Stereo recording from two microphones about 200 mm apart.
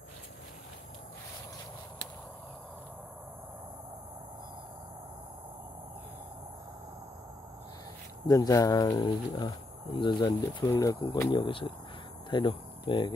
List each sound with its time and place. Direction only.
8.3 s speech: 15° left (ahead or behind)